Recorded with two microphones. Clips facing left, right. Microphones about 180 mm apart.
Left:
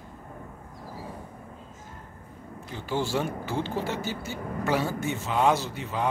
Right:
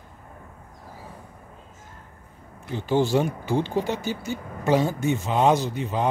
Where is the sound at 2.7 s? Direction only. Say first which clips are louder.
Right 7 dB; 20° right (ahead or behind).